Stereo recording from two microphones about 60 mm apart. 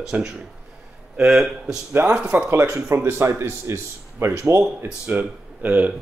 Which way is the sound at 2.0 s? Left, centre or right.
Right.